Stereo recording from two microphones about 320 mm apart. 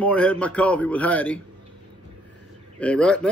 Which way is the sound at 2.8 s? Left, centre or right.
Centre.